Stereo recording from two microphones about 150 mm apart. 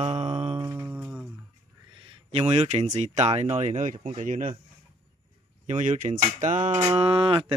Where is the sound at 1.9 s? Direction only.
35° right (ahead or behind); by 4.6 s 60° right (ahead or behind).